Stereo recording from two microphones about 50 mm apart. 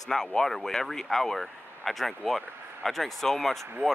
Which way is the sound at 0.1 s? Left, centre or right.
Centre.